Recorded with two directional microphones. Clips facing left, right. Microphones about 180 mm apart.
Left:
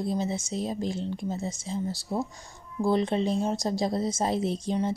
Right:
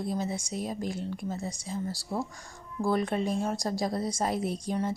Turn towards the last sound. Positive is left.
turn(degrees=25)  # may be behind; listen again after turning